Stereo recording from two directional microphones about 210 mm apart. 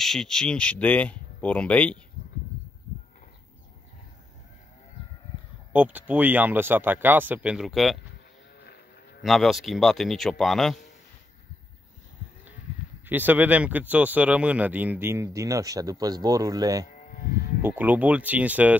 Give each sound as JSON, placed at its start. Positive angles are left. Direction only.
{"t": 0.0, "sound": "speech", "side_deg": 0}
{"t": 5.7, "sound": "speech", "side_deg": -5}
{"t": 9.2, "sound": "speech", "side_deg": 0}
{"t": 13.0, "sound": "speech", "side_deg": -10}
{"t": 16.9, "sound": "livestock", "side_deg": 40}
{"t": 17.6, "sound": "speech", "side_deg": -10}